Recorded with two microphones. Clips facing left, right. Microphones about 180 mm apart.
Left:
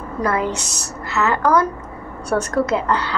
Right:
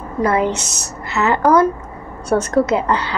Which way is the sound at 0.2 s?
20° right (ahead or behind).